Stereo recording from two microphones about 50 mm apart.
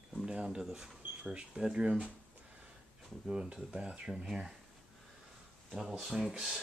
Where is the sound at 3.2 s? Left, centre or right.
Centre.